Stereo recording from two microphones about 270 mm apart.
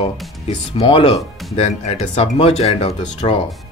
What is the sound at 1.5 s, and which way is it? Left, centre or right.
Speech, left.